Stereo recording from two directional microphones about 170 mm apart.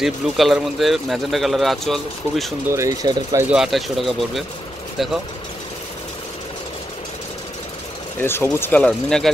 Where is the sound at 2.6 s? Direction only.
15° right (ahead or behind).